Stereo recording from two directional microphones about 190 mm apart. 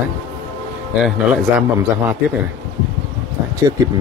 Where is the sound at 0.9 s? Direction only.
Centre (ahead or behind).